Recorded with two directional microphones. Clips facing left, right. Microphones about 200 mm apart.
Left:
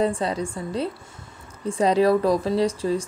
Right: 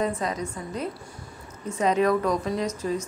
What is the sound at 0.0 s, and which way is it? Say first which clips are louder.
Speech: left 4 dB; 30° left (ahead or behind).